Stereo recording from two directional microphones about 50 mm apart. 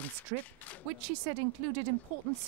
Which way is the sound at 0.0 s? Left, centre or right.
Left.